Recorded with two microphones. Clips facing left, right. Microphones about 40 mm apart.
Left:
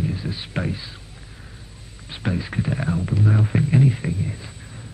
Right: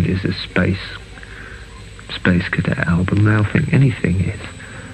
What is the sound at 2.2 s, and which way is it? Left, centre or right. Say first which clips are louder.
Speech: right 8 dB; right.